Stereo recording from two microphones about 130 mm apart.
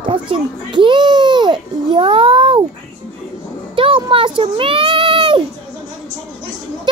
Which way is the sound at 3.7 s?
40° right (ahead or behind).